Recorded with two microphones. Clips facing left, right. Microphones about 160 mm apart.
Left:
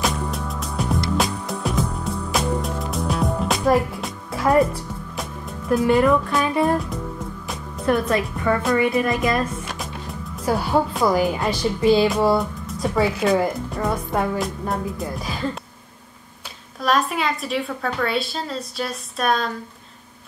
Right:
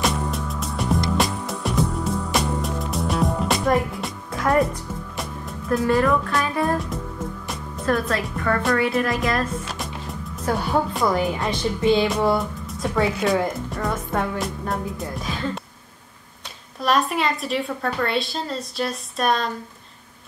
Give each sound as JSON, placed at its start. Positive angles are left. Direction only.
{"t": 0.0, "sound": "music", "side_deg": 0}
{"t": 5.9, "sound": "speech", "side_deg": 20}
{"t": 6.4, "sound": "music", "side_deg": 20}
{"t": 7.9, "sound": "speech", "side_deg": 15}
{"t": 8.9, "sound": "a woman's voice", "side_deg": 0}
{"t": 16.8, "sound": "a woman's voice", "side_deg": 0}